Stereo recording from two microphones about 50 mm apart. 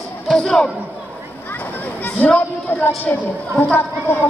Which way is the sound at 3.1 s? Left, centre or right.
Left.